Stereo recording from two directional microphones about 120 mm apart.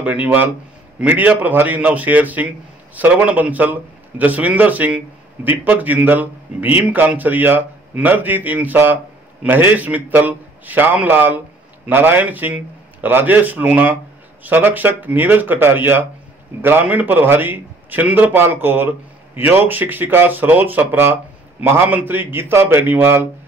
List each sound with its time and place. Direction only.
0.0 s a man's voice: 15° right (ahead or behind)